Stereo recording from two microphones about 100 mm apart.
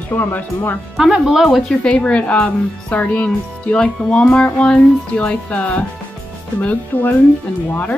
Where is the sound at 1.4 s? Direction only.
10° left (ahead or behind).